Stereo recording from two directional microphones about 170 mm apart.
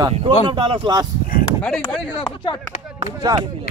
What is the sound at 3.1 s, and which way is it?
Speech, 25° right (ahead or behind).